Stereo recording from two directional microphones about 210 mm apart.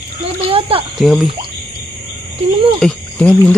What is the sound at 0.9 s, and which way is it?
Speech, centre (ahead or behind).